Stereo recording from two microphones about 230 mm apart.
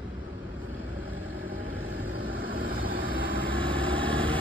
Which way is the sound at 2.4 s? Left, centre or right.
Right.